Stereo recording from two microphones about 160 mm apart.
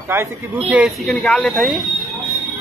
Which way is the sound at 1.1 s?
10° left (ahead or behind).